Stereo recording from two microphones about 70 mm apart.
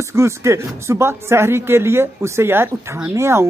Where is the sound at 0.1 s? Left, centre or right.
Right.